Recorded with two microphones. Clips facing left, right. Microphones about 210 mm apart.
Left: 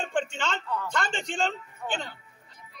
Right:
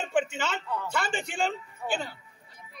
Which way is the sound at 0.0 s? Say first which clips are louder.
Right 2 dB; 5° right (ahead or behind).